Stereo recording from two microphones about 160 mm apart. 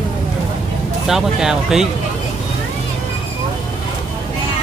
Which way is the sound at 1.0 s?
5° right (ahead or behind).